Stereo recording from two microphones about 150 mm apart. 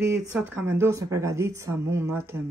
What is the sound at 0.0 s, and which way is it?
Speech, 20° right (ahead or behind).